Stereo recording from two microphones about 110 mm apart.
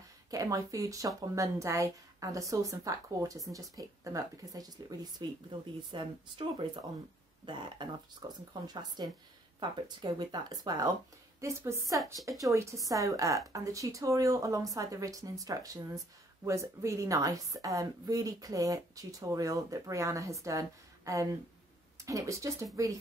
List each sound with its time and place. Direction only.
0.3 s a woman's voice: 30° right (ahead or behind)
11.4 s a woman's voice: 25° right (ahead or behind)